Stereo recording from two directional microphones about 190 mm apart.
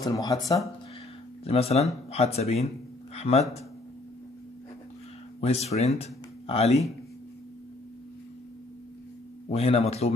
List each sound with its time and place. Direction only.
0.0 s speech: 20° left (ahead or behind)
1.4 s speech: 30° left (ahead or behind)
5.4 s speech: 35° left (ahead or behind)
9.5 s speech: 30° left (ahead or behind)